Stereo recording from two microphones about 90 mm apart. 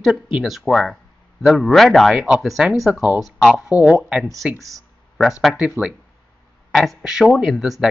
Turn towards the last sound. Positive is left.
turn(degrees=-5)  # may be behind; listen again after turning